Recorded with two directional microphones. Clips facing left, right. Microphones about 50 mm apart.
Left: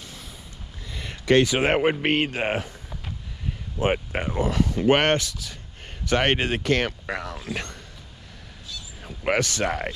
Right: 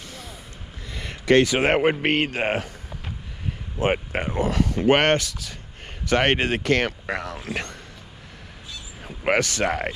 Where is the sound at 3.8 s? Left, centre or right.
Right.